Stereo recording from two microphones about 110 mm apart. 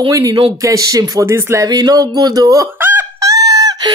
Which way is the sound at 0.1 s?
30° right (ahead or behind).